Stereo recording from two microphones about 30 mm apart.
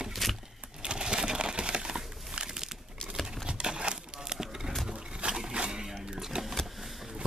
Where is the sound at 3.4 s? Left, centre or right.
Right.